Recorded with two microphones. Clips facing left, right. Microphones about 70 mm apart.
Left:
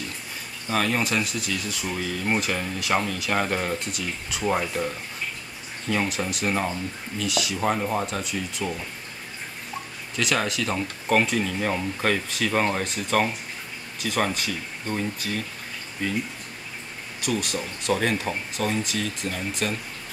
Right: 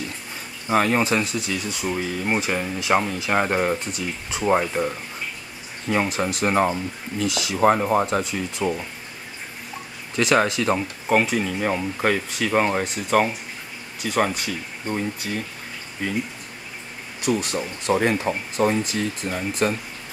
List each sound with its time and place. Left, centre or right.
0.7 s speech: right
10.1 s speech: right
10.8 s speech: centre
17.2 s speech: right